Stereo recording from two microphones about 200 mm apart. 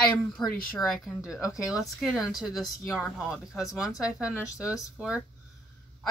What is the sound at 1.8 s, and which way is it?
Speech, centre (ahead or behind).